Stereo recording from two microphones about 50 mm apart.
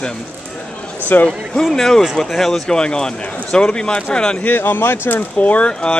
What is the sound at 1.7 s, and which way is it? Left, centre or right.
A man's voice, centre.